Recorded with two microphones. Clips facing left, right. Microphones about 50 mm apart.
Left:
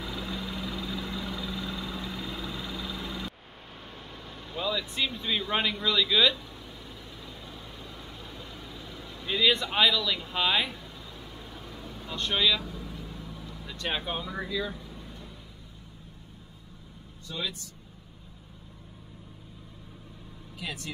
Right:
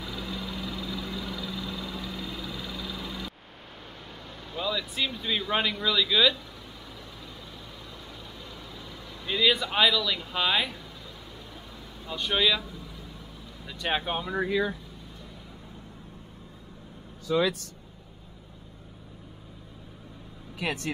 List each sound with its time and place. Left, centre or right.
0.0 s vehicle: centre
4.5 s speech: centre
8.5 s vehicle: left
8.9 s speech: centre
12.1 s speech: centre
12.6 s vehicle: left
13.7 s speech: centre
14.3 s speech: right
17.3 s speech: right
20.5 s speech: right